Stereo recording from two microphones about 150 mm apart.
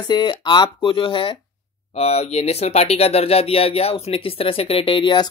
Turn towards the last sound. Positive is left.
turn(degrees=30)  # may be behind; listen again after turning